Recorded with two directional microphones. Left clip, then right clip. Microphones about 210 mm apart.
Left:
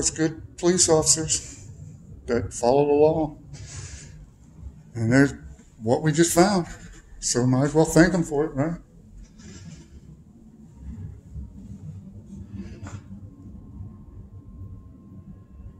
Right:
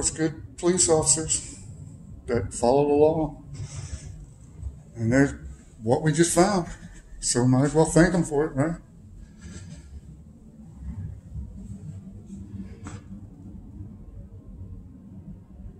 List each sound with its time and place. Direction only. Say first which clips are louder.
0.0 s speech: left 2 dB; 15° left (ahead or behind)
4.9 s a man's voice: left 2 dB; 20° left (ahead or behind)
8.2 s speech: even; 5° left (ahead or behind)